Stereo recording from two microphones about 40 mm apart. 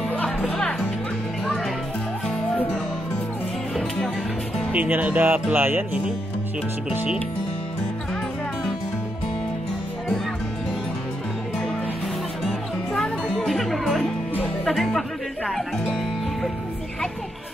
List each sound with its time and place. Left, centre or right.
4.7 s speech: right
13.0 s music: centre
14.7 s music: centre